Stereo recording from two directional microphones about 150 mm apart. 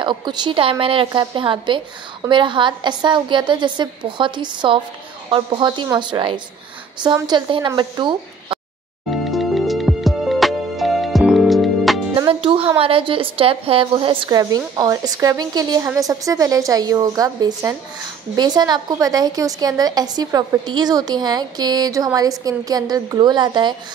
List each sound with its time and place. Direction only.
0.0 s a woman's voice: 30° right (ahead or behind)
9.3 s music: centre (ahead or behind)
12.2 s a woman's voice: 35° right (ahead or behind)